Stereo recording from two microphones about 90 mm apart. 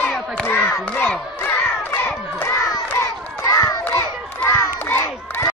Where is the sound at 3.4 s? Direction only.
40° left (ahead or behind).